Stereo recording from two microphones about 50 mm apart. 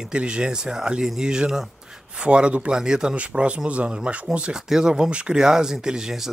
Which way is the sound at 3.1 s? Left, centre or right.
Right.